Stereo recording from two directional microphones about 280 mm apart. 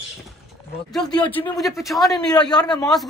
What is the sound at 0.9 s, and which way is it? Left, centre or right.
A man's voice, centre.